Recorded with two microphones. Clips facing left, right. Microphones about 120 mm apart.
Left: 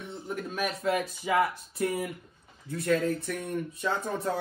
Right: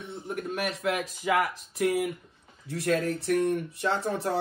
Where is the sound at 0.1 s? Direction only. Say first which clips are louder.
Right 3 dB; 65° right (ahead or behind).